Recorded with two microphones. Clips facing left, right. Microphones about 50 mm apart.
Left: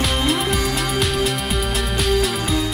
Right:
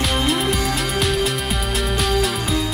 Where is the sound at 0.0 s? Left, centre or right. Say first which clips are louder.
Even; centre.